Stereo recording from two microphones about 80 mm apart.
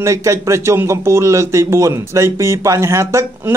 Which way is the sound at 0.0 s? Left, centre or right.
Right.